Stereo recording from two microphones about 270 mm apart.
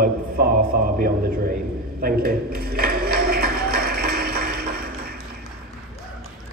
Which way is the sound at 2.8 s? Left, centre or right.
Right.